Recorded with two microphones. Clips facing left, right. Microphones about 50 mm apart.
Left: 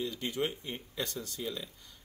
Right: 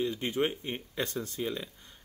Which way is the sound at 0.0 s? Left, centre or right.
Right.